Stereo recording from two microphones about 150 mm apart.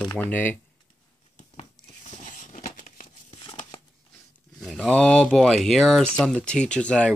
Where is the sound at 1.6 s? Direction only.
50° left (ahead or behind).